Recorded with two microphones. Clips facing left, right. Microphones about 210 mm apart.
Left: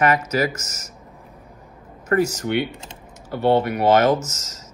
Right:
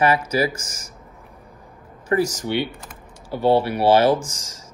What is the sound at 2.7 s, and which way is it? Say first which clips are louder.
Speech: left 1 dB; 25° left (ahead or behind).